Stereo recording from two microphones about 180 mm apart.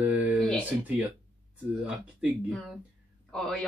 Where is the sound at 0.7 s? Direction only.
10° right (ahead or behind).